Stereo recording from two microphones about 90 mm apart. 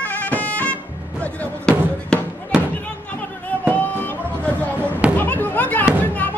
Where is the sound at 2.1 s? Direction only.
10° left (ahead or behind).